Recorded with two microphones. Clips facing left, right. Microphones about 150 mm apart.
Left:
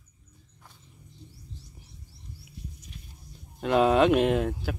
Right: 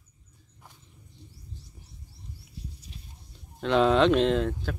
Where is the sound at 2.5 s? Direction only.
30° right (ahead or behind).